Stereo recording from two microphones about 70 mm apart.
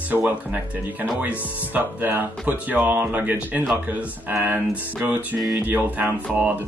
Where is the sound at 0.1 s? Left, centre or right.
Right.